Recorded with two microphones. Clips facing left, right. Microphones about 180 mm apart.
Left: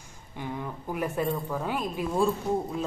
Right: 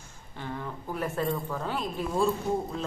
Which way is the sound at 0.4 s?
15° left (ahead or behind).